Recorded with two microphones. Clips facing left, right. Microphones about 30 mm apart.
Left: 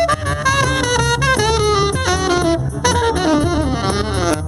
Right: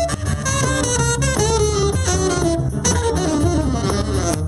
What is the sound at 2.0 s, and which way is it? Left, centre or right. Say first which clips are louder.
Saxophone: left 3 dB; left.